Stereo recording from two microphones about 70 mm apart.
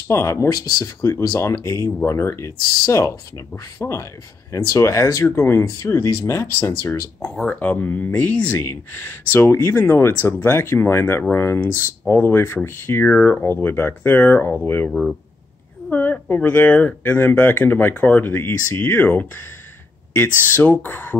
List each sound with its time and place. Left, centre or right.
0.1 s speech: left
0.5 s speech: left
1.0 s speech: left
7.5 s speech: left
14.9 s speech: centre
15.9 s a sound: left
16.3 s speech: left